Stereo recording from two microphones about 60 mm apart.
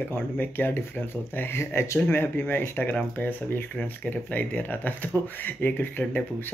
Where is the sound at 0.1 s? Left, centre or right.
Left.